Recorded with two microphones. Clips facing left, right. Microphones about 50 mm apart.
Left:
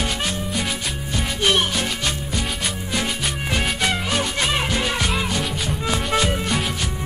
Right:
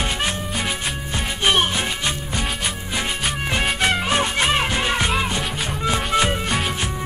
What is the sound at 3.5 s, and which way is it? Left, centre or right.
Music, centre.